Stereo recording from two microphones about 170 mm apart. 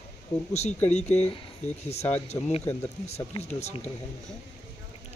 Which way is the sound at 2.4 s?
20° left (ahead or behind).